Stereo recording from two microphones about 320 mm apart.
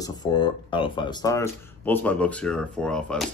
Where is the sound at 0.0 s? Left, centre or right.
Centre.